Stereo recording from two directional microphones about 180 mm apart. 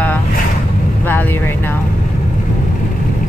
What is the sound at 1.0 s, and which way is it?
Vehicle, 10° left (ahead or behind).